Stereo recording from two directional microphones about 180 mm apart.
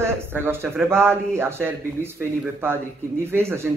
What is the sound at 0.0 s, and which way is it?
A man's voice, 10° right (ahead or behind).